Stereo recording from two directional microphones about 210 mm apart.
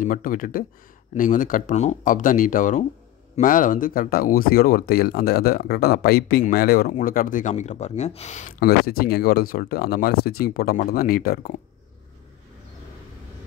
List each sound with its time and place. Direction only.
0.0 s speech: 40° left (ahead or behind)